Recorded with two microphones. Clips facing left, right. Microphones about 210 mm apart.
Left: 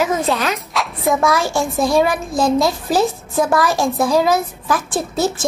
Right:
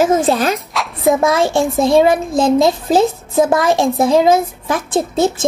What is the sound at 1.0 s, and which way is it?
Speech, 20° right (ahead or behind).